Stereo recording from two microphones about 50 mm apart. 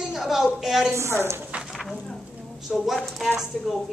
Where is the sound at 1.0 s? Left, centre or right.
Right.